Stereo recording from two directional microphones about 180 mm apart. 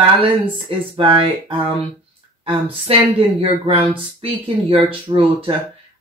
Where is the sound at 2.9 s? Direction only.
35° right (ahead or behind).